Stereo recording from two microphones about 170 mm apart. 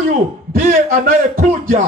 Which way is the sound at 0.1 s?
55° right (ahead or behind).